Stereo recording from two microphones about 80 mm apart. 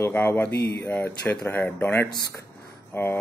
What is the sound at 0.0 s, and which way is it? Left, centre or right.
Speech, left.